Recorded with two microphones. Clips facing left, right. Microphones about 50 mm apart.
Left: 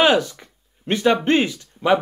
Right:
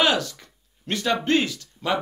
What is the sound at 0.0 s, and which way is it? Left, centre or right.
Speech, left.